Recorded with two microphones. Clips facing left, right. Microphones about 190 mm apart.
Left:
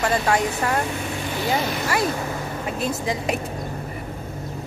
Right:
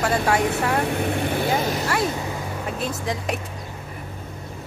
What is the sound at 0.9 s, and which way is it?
Vehicle, 60° right (ahead or behind).